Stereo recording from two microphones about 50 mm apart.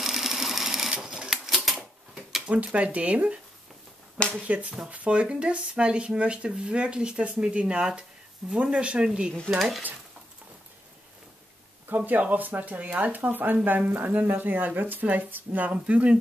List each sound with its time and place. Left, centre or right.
0.0 s sewing machine: centre
1.5 s typewriter: centre
2.4 s speech: right
4.5 s speech: right
9.6 s speech: centre
12.0 s speech: right